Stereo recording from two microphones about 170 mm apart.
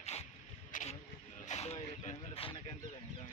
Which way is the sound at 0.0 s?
40° left (ahead or behind).